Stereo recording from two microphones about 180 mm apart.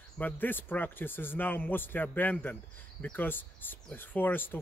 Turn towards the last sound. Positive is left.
turn(degrees=10)  # may be behind; listen again after turning